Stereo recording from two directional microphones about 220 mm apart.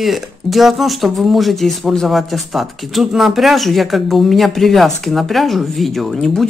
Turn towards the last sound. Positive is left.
turn(degrees=0)  # may be behind; listen again after turning